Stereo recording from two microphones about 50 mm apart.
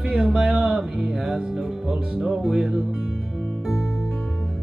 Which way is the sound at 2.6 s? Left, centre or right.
Centre.